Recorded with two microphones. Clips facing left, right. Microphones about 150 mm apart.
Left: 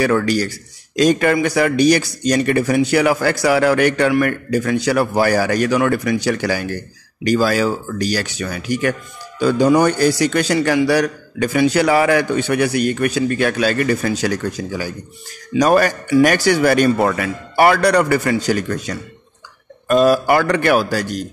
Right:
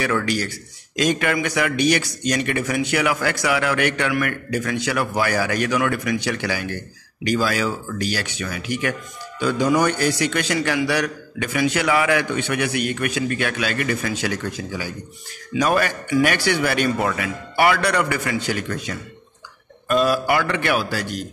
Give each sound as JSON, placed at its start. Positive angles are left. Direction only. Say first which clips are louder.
{"t": 0.0, "sound": "a man's voice", "louder": "left 6 dB", "side_deg": 35}